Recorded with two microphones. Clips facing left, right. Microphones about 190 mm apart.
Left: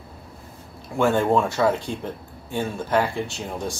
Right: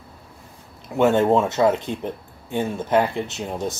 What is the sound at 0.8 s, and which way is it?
Speech, 20° right (ahead or behind).